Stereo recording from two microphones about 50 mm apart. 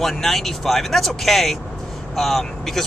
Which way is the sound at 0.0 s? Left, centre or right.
Centre.